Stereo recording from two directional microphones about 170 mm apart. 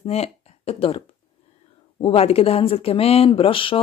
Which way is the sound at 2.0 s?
35° left (ahead or behind).